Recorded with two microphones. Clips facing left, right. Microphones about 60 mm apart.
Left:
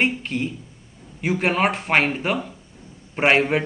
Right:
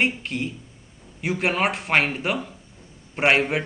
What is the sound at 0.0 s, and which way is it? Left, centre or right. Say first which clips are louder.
Speech: left 2 dB; centre.